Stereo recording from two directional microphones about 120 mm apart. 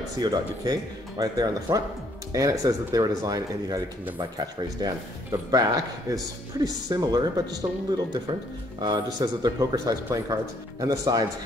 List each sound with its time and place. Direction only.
0.2 s speech: 35° right (ahead or behind)
8.7 s speech: 35° right (ahead or behind)